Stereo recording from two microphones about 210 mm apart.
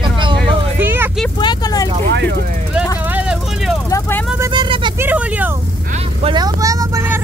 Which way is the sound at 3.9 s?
15° left (ahead or behind).